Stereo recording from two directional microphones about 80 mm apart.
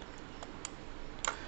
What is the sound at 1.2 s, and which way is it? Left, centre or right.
Tick-tock, centre.